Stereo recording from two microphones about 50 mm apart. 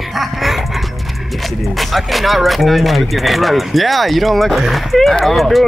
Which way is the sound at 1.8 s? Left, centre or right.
Centre.